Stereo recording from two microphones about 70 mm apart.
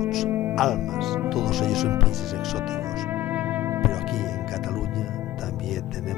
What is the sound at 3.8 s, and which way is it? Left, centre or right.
Music, centre.